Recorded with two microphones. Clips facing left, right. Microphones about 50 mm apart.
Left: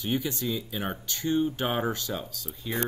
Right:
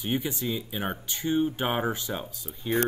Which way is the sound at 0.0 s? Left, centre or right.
Right.